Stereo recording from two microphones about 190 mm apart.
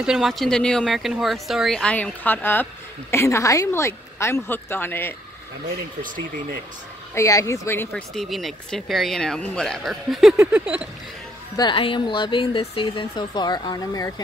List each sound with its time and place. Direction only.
0.0 s speech: centre (ahead or behind)
7.2 s speech: 15° left (ahead or behind)
8.1 s speech: centre (ahead or behind)
10.3 s a sound: 10° right (ahead or behind)
11.5 s speech: 25° left (ahead or behind)